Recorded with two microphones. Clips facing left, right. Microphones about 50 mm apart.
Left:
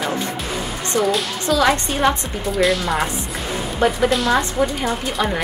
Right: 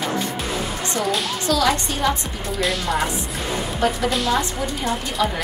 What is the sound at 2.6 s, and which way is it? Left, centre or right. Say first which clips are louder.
Speech: left 4 dB; centre.